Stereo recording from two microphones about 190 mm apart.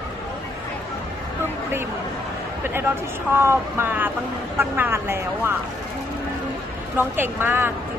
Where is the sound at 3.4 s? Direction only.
10° right (ahead or behind).